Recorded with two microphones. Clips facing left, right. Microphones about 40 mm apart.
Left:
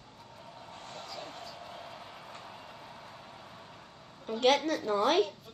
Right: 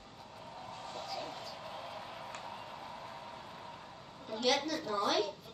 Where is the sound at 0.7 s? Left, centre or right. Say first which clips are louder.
Right 1 dB; left.